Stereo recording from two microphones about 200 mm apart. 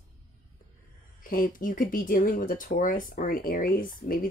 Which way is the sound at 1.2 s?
45° left (ahead or behind).